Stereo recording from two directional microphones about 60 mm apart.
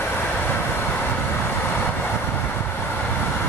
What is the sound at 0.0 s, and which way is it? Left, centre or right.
Vehicle, left.